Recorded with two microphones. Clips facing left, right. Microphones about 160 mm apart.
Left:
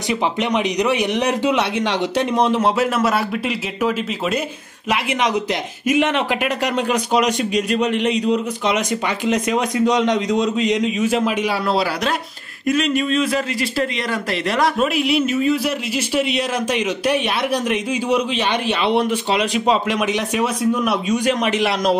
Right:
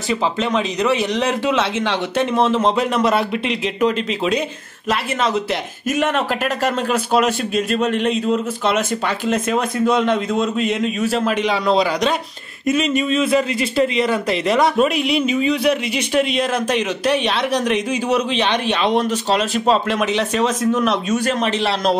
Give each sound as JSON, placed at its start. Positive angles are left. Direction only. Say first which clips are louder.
{"t": 0.4, "sound": "a man's voice", "louder": "even", "side_deg": 15}
{"t": 6.6, "sound": "a man's voice", "louder": "even", "side_deg": 15}